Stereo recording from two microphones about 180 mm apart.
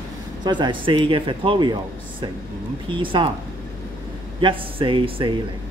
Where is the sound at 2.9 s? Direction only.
25° right (ahead or behind).